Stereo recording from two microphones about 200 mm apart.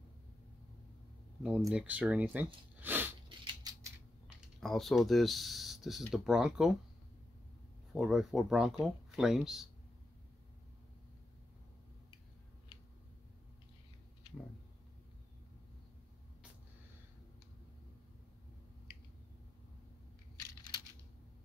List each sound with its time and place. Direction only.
1.7 s speech: 5° right (ahead or behind)
3.3 s a sound: 20° right (ahead or behind)
4.6 s speech: centre (ahead or behind)
7.9 s speech: centre (ahead or behind)